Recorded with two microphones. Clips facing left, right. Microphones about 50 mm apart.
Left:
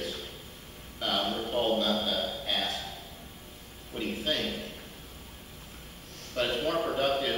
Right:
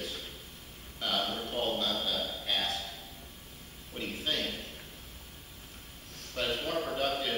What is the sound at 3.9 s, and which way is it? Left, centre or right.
Speech, centre.